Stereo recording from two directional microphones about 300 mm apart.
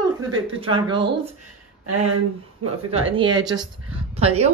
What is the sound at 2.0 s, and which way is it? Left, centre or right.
Speech, right.